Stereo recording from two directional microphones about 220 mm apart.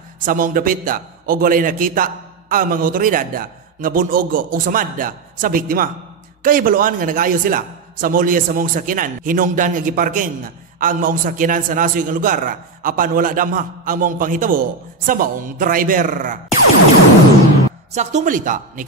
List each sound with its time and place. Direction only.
0.2 s a man's voice: 40° right (ahead or behind)
17.9 s a man's voice: 35° right (ahead or behind)